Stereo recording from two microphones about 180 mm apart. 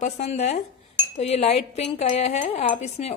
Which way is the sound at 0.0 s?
40° left (ahead or behind).